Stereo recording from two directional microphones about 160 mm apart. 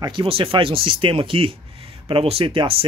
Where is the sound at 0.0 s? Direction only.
35° right (ahead or behind).